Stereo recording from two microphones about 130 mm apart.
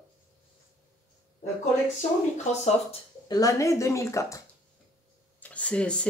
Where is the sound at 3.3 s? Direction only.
25° left (ahead or behind).